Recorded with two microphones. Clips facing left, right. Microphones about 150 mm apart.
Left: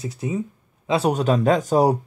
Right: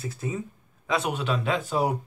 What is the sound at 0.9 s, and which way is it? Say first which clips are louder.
Speech: left 7 dB; 40° left (ahead or behind).